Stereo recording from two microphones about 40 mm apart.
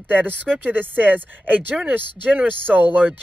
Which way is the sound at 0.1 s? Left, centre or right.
Right.